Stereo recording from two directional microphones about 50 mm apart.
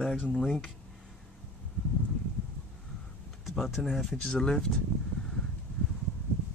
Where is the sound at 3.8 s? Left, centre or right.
Centre.